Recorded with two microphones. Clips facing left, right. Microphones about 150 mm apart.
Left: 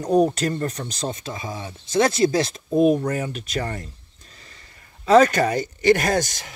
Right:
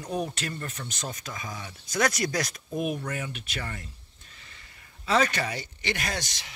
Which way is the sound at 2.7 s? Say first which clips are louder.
Left 15 dB; 40° left (ahead or behind).